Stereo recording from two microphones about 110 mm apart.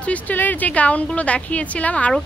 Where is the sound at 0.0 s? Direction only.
15° left (ahead or behind).